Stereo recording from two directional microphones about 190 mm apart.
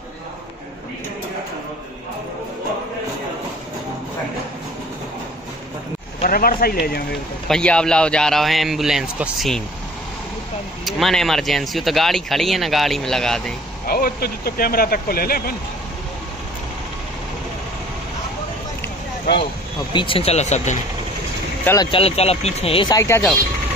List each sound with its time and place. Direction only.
6.2 s speech: 50° left (ahead or behind)
7.4 s speech: 5° left (ahead or behind)
10.9 s speech: centre (ahead or behind)
13.8 s speech: 50° left (ahead or behind)
19.9 s speech: 25° left (ahead or behind)
21.9 s speech: 30° left (ahead or behind); by 23.3 s 15° left (ahead or behind)